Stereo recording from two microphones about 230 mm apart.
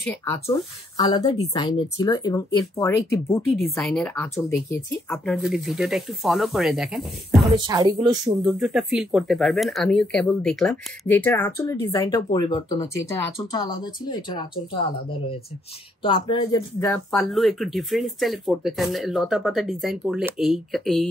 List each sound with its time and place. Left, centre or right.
0.0 s speech: centre
3.5 s speech: centre
7.5 s speech: centre
8.5 s speech: centre
16.0 s speech: left; by 21.1 s centre